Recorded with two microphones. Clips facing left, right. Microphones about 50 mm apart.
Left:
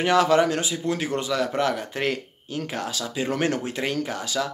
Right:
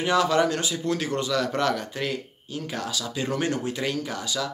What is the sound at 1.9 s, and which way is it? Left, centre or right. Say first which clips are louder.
Speech: left 3 dB; left.